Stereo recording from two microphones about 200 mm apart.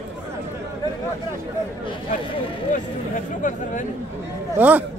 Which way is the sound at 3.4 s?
40° left (ahead or behind).